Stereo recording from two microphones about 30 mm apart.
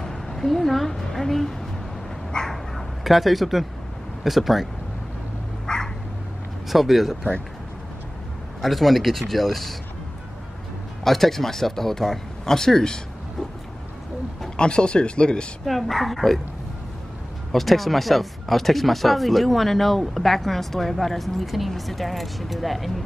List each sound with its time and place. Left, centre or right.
0.0 s a woman's voice: centre
2.3 s dog: left
3.0 s speech: centre
5.7 s dog: left
6.7 s speech: centre
8.5 s speech: centre
11.1 s speech: centre
14.6 s speech: left
15.6 s speech: centre
17.5 s speech: centre